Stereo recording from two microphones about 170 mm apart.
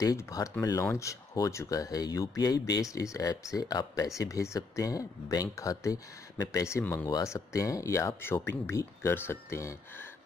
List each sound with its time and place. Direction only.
0.0 s speech: 20° left (ahead or behind)